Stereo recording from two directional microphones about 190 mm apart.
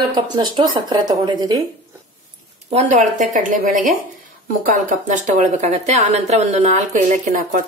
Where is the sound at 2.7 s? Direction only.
40° right (ahead or behind).